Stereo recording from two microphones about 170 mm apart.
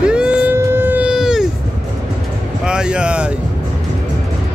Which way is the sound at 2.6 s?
5° right (ahead or behind).